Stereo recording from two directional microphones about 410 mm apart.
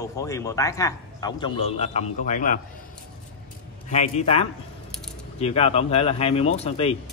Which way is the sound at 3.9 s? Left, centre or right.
Centre.